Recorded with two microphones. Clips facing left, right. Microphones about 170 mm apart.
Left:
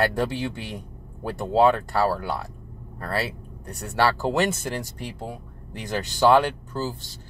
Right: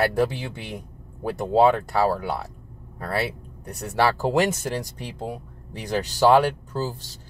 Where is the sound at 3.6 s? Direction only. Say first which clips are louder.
Right 1 dB; 10° right (ahead or behind).